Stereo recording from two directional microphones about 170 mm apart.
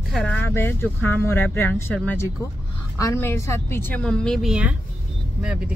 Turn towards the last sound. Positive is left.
turn(degrees=-5)  # may be behind; listen again after turning